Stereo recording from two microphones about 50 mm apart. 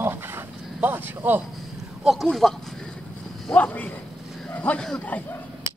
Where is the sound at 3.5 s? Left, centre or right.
Left.